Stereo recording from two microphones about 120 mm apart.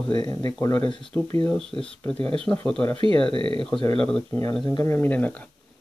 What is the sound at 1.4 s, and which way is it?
Speech, 5° left (ahead or behind).